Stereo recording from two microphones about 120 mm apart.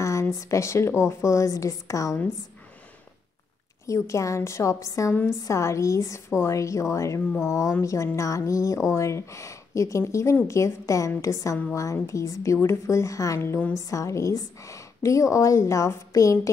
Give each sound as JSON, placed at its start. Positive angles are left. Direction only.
{"t": 0.0, "sound": "speech", "side_deg": 25}
{"t": 3.8, "sound": "speech", "side_deg": 25}